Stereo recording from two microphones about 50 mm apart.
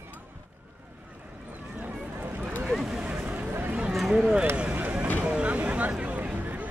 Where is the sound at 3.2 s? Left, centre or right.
Right.